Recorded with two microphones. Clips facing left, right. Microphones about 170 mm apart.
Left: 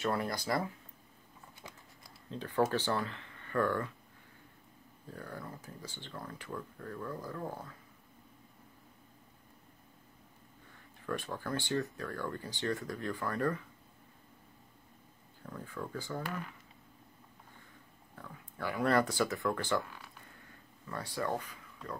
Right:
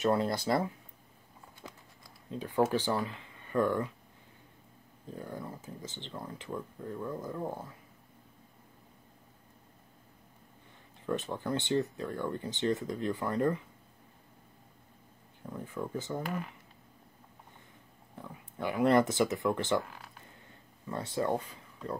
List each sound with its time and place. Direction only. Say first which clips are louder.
0.0 s speech: right 5 dB; 25° right (ahead or behind)
2.3 s speech: right 2 dB; 15° right (ahead or behind)
5.0 s speech: right 4 dB; 20° right (ahead or behind)
11.1 s speech: right 4 dB; 20° right (ahead or behind)
15.4 s speech: right 4 dB; 20° right (ahead or behind)
18.1 s speech: right 4 dB; 20° right (ahead or behind)
20.4 s a sound: right 7 dB; 20° right (ahead or behind)